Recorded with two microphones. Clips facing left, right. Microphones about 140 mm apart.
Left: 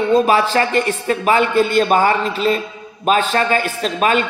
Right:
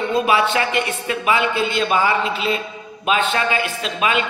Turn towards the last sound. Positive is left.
turn(degrees=45)  # may be behind; listen again after turning